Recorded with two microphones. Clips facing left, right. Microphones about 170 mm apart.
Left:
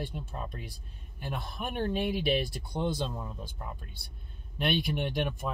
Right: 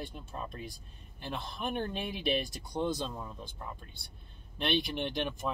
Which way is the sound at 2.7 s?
15° left (ahead or behind).